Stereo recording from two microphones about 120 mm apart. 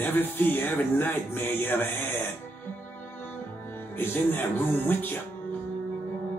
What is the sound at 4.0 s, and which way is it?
Speech, 15° left (ahead or behind).